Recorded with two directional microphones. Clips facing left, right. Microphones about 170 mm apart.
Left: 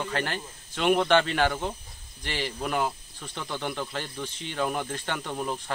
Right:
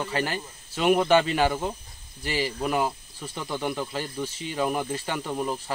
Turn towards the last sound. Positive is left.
turn(degrees=-5)  # may be behind; listen again after turning